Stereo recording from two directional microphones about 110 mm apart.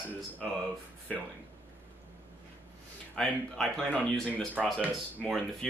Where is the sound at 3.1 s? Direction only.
5° left (ahead or behind).